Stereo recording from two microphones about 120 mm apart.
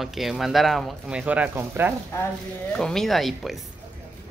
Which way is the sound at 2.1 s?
20° left (ahead or behind).